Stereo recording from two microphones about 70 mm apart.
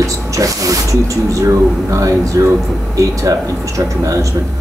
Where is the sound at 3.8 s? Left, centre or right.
Right.